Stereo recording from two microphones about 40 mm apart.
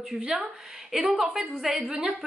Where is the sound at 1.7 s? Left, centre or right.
Right.